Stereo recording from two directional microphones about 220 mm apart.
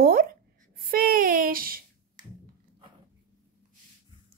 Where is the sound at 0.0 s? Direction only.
40° right (ahead or behind).